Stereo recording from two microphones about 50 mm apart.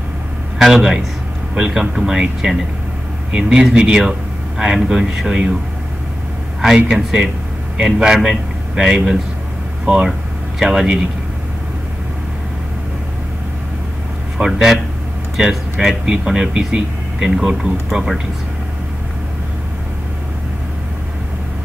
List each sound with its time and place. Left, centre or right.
0.6 s speech: centre
3.8 s speech: centre
6.6 s speech: centre
10.6 s speech: centre
14.4 s speech: centre